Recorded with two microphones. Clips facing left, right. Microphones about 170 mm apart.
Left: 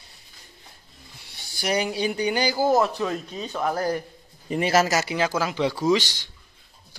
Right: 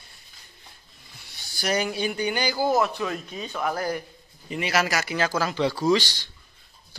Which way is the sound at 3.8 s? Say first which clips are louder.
Left 3 dB; 35° left (ahead or behind).